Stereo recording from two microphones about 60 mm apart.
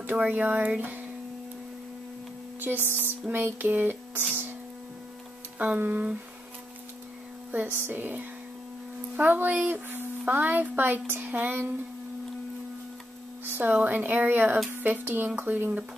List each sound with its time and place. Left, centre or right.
0.1 s a woman's voice: right
2.6 s a sound: right
5.8 s a woman's voice: right
7.5 s a woman's voice: right
13.5 s a sound: right
13.7 s a woman's voice: right